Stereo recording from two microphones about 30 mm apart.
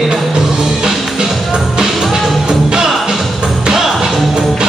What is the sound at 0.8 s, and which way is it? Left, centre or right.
Music, right.